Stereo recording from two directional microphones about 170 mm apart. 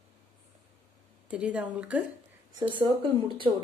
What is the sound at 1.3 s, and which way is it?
Speech, 10° right (ahead or behind).